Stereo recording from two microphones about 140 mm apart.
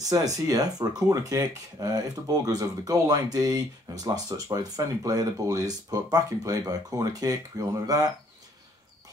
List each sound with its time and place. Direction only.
0.0 s speech: 25° right (ahead or behind)